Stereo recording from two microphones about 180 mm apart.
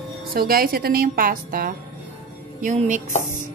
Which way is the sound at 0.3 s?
55° right (ahead or behind).